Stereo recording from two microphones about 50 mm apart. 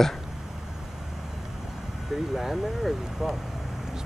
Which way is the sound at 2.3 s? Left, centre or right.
Centre.